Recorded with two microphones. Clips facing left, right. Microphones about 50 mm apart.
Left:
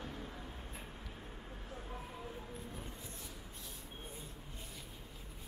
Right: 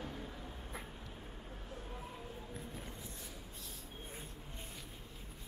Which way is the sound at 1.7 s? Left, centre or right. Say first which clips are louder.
Left 1 dB; centre.